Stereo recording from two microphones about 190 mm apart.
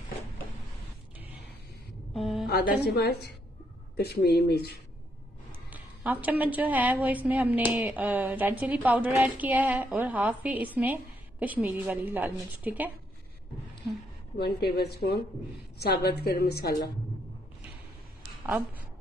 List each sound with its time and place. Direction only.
2.1 s a sound: centre (ahead or behind)
2.4 s a woman's voice: 55° left (ahead or behind)
5.7 s a woman's voice: 10° right (ahead or behind)
14.4 s a woman's voice: 55° left (ahead or behind)
18.4 s a woman's voice: 10° right (ahead or behind)